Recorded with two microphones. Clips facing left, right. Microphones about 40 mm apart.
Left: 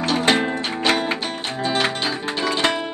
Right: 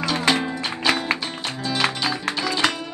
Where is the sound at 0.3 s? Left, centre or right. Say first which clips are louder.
Left 2 dB; left.